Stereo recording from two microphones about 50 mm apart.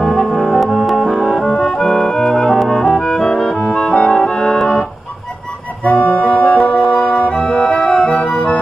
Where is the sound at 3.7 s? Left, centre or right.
Centre.